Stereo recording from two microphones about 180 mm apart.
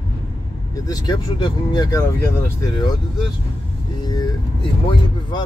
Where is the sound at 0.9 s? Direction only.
25° left (ahead or behind).